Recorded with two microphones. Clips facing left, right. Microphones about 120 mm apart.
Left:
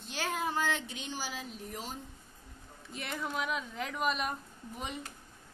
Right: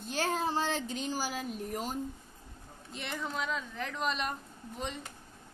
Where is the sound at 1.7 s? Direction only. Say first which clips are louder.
Right 4 dB; 45° right (ahead or behind).